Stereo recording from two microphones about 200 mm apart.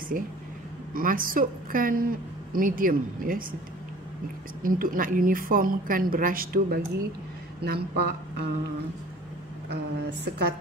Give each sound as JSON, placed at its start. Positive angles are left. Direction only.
{"t": 0.1, "sound": "a woman's voice", "side_deg": -45}
{"t": 4.6, "sound": "a woman's voice", "side_deg": -45}
{"t": 9.7, "sound": "speech", "side_deg": -60}